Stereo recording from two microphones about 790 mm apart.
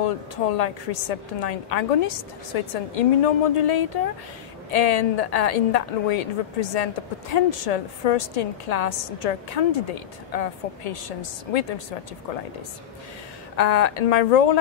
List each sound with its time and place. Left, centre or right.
0.0 s a woman's voice: left
13.6 s a woman's voice: left